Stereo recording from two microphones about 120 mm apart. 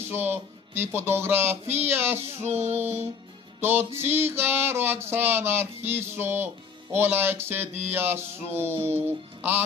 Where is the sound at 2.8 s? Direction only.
20° right (ahead or behind).